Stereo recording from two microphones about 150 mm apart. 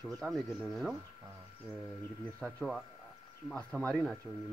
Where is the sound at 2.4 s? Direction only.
Centre (ahead or behind).